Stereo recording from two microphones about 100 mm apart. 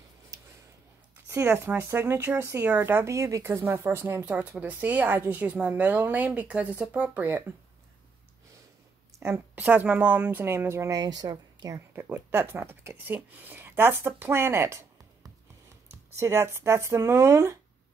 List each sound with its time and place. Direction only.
0.3 s a sound: 35° right (ahead or behind)
1.3 s speech: 25° right (ahead or behind)
9.6 s speech: 15° right (ahead or behind)
10.4 s a woman's voice: 25° right (ahead or behind)
11.9 s speech: 20° right (ahead or behind)